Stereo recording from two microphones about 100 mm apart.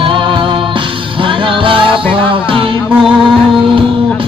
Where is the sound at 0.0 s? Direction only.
55° right (ahead or behind).